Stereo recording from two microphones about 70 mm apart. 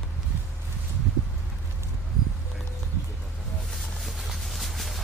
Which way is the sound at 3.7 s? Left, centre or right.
Centre.